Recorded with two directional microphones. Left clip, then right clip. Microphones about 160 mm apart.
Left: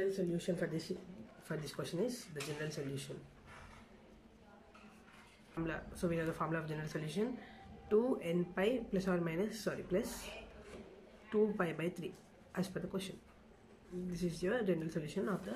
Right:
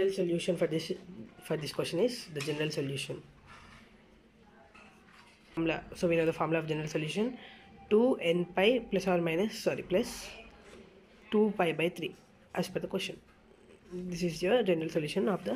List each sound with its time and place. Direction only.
0.0 s speech: 20° right (ahead or behind)
5.5 s speech: 20° right (ahead or behind)
11.2 s speech: 15° right (ahead or behind)
14.1 s speech: 15° right (ahead or behind)